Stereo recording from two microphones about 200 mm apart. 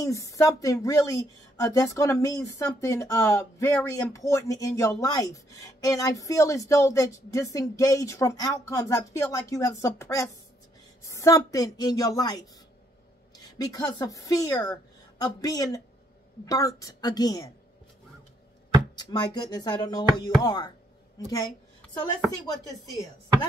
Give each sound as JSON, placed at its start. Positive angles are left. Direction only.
{"t": 0.0, "sound": "a woman's voice", "side_deg": 15}
{"t": 18.9, "sound": "speech", "side_deg": 20}